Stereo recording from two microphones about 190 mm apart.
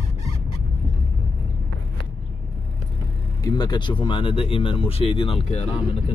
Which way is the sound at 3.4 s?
20° left (ahead or behind).